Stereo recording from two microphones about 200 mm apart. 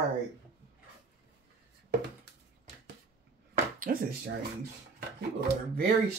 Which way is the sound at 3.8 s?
45° right (ahead or behind).